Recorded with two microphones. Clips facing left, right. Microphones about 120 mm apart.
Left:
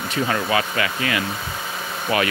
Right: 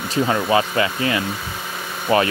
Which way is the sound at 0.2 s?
20° right (ahead or behind).